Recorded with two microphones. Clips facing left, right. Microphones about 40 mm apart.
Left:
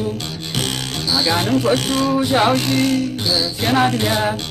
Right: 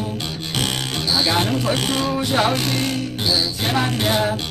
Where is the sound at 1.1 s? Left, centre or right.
Centre.